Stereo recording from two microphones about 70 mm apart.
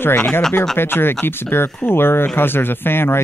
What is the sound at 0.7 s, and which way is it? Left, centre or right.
Speech, left.